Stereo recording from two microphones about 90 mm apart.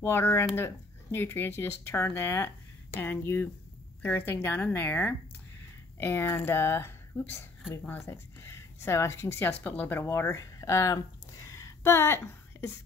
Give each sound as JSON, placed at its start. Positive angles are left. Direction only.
{"t": 0.0, "sound": "speech", "side_deg": 25}